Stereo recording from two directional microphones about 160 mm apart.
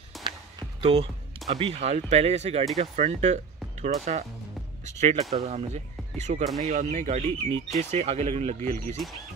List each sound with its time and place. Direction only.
0.2 s music: 30° right (ahead or behind)
1.5 s speech: 40° right (ahead or behind)
8.6 s speech: 15° left (ahead or behind)